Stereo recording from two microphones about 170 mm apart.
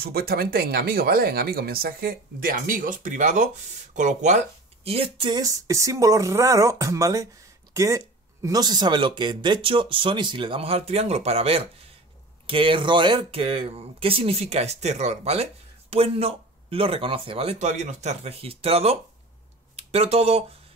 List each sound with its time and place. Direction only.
0.0 s speech: 65° right (ahead or behind); by 20.4 s 35° right (ahead or behind)